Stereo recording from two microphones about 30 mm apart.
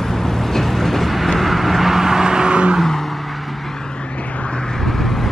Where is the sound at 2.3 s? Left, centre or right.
Right.